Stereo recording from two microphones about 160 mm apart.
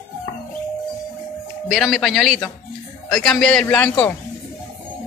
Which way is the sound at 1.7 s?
Centre (ahead or behind).